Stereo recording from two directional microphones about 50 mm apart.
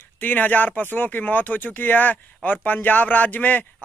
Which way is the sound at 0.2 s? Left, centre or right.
Left.